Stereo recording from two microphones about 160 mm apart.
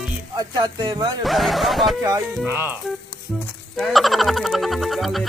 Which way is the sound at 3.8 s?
Centre (ahead or behind).